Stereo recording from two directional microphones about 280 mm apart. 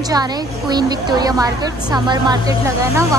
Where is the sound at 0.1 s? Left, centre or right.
Centre.